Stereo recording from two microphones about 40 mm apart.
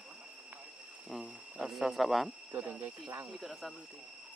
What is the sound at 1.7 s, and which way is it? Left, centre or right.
Speech, centre.